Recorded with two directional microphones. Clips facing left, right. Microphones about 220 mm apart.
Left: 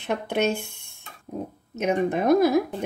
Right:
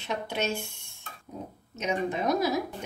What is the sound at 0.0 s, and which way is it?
Speech, 55° left (ahead or behind).